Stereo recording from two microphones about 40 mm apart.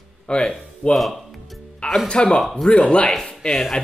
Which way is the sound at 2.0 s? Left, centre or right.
Left.